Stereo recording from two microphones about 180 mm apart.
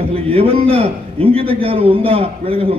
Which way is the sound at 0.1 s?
30° right (ahead or behind).